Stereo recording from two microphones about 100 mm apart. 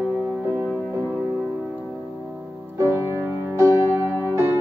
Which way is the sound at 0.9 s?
25° right (ahead or behind).